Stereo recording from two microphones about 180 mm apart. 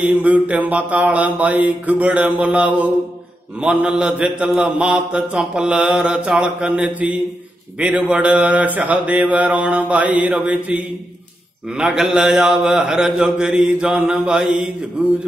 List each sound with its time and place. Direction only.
0.0 s mantra: 10° right (ahead or behind)